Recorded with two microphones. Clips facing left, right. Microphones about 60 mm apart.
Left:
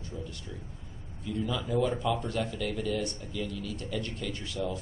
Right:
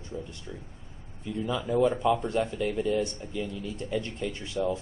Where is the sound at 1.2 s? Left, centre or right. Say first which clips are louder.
Right 2 dB; right.